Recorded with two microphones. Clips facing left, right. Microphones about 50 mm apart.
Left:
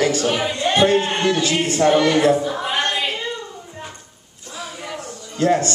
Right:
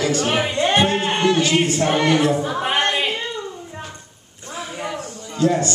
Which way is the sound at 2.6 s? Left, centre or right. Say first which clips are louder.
Right 2 dB; right.